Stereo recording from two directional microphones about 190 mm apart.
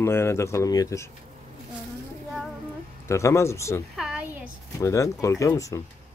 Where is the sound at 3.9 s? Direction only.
5° right (ahead or behind).